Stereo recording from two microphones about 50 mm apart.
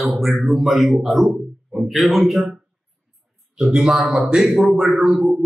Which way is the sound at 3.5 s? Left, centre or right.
Centre.